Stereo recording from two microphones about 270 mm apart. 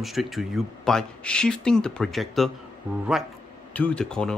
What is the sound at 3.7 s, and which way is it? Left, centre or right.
Speech, centre.